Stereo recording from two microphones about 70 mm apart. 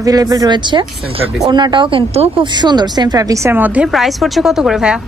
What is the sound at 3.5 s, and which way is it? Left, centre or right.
Speech, right.